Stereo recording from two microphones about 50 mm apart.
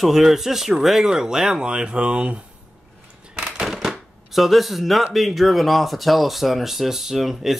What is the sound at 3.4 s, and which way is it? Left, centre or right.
Shuffling cards, centre.